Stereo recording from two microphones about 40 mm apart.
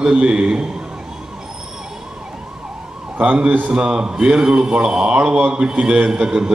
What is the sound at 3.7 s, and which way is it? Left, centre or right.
A man's voice, right.